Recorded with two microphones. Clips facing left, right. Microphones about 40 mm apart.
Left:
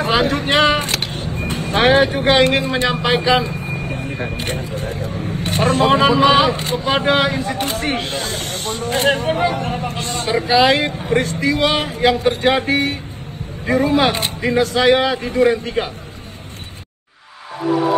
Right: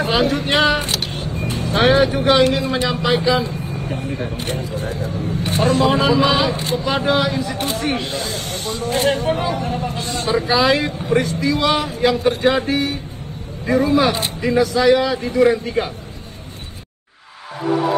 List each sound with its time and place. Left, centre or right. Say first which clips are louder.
0.0 s speech: left 1 dB; left